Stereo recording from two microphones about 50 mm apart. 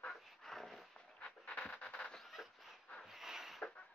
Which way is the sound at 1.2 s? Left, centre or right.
Centre.